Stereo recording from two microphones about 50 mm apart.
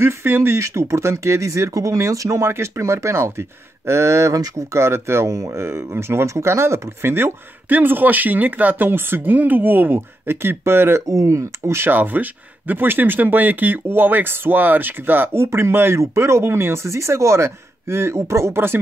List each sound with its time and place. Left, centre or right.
0.0 s speech: right
0.6 s speech: right
5.8 s speech: right
9.9 s speech: right
11.9 s speech: right
16.0 s speech: right
16.8 s speech: right